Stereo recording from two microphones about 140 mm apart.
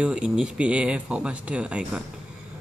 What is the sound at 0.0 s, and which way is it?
Speech, 5° right (ahead or behind).